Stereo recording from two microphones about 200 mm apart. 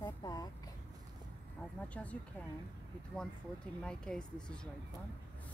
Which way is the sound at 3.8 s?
5° left (ahead or behind).